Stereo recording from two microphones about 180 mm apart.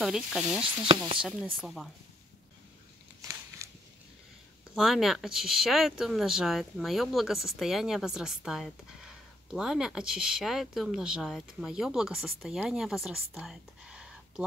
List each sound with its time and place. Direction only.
0.0 s speech: 5° right (ahead or behind)
0.8 s speech: 30° right (ahead or behind)
1.2 s speech: 5° right (ahead or behind)
3.2 s a sound: 15° right (ahead or behind)
4.7 s speech: centre (ahead or behind)